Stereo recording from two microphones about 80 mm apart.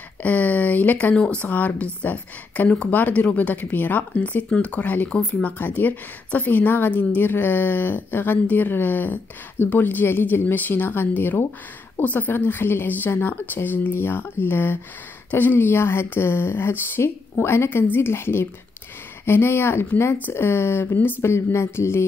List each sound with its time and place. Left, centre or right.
0.2 s speech: centre